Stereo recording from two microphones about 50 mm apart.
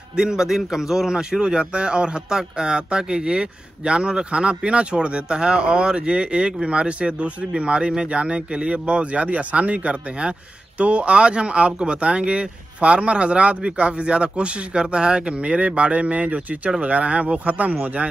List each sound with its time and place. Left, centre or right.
0.1 s a man's voice: centre; by 18.0 s right